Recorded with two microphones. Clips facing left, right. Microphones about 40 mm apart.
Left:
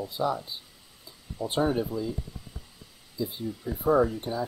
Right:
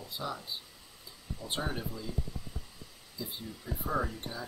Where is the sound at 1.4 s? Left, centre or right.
Left.